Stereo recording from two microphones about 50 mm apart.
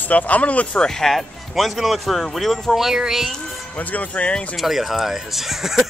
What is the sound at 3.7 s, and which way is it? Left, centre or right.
Speech, left.